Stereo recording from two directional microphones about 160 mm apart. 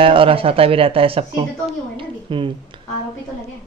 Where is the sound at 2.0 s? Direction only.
30° right (ahead or behind).